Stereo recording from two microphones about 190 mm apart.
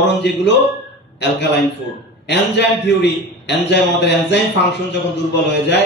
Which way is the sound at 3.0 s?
65° left (ahead or behind).